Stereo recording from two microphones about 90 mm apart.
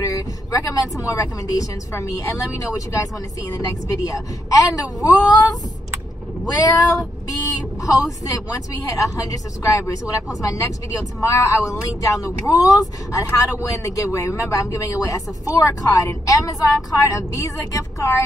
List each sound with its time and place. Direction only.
0.0 s speech: 40° left (ahead or behind)